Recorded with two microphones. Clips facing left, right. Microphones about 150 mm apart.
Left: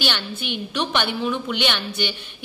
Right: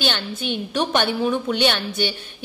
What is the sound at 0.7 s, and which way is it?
A woman's voice, 45° right (ahead or behind).